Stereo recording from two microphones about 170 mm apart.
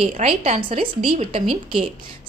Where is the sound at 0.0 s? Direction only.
35° right (ahead or behind).